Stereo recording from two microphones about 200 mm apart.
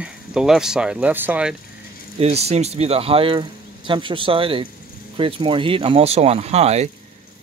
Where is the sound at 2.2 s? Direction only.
30° right (ahead or behind).